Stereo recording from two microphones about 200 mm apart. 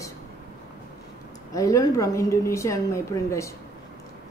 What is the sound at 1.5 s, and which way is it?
A woman's voice, 15° left (ahead or behind).